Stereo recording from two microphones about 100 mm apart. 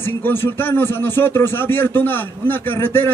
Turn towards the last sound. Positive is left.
turn(degrees=20)  # may be behind; listen again after turning